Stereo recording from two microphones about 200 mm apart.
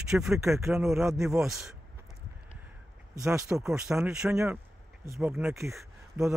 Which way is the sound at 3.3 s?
Centre (ahead or behind).